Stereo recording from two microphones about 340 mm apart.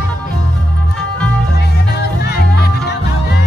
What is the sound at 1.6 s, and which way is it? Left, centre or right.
Music, left.